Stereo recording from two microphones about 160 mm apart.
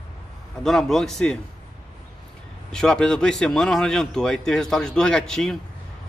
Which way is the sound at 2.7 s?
5° left (ahead or behind).